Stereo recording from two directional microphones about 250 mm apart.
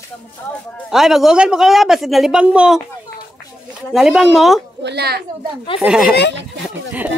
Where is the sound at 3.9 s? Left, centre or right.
Centre.